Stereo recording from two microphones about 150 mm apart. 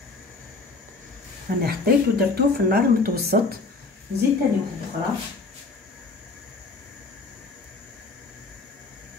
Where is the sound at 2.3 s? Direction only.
90° right.